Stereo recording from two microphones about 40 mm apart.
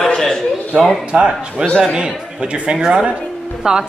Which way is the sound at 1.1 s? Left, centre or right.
Right.